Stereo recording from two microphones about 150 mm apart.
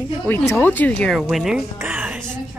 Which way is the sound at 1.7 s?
10° right (ahead or behind).